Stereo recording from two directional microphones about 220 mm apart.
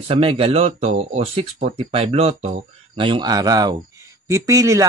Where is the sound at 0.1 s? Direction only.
25° right (ahead or behind).